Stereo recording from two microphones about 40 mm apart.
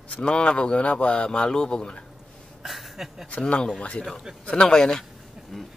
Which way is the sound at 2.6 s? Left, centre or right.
Centre.